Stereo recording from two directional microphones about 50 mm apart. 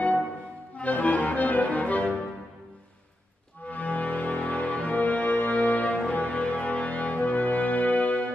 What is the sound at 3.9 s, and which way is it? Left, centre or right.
Music, left.